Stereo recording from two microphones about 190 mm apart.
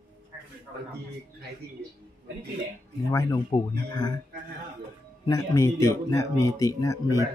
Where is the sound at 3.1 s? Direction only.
25° left (ahead or behind).